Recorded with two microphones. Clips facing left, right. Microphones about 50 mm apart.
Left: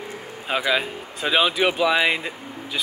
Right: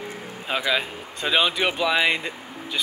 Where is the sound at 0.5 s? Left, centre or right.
Centre.